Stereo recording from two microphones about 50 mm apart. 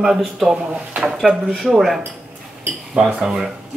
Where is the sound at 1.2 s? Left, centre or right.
Centre.